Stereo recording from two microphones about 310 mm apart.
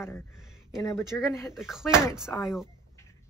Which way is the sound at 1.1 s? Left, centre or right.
Centre.